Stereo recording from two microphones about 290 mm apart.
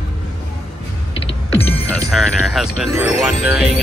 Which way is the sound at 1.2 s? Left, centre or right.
Centre.